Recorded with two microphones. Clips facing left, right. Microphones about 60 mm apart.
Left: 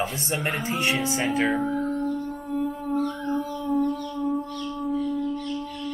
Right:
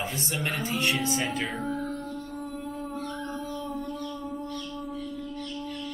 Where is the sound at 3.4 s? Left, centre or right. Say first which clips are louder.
Left 9 dB; centre.